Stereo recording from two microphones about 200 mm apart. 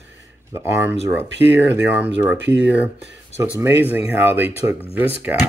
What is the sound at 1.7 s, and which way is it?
Speech, 10° right (ahead or behind).